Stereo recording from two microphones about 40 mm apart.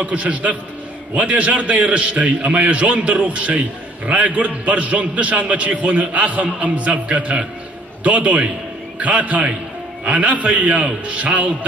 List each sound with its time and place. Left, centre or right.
0.0 s a man's voice: right